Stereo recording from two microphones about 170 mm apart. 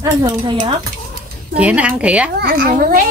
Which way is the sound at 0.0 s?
25° right (ahead or behind).